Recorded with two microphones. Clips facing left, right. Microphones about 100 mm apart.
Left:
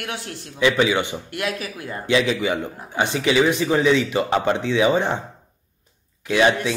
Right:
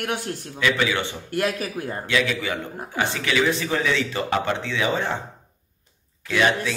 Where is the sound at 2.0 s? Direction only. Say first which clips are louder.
Left 5 dB; 25° left (ahead or behind).